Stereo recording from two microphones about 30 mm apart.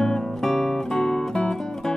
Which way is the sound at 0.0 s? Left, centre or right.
Centre.